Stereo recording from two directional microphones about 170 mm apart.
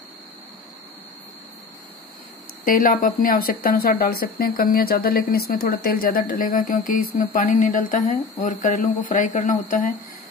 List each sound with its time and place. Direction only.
2.6 s speech: 55° left (ahead or behind)